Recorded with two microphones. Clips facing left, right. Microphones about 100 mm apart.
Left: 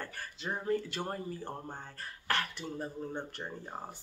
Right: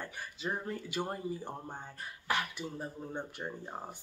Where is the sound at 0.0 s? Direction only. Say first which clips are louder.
Even; 15° right (ahead or behind).